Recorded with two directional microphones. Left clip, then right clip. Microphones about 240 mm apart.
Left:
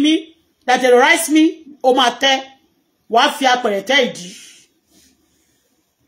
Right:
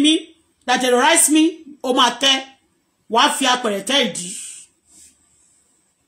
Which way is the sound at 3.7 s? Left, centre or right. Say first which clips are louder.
Left 4 dB; right.